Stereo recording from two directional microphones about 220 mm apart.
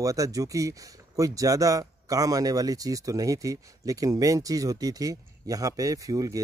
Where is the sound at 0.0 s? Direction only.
15° right (ahead or behind).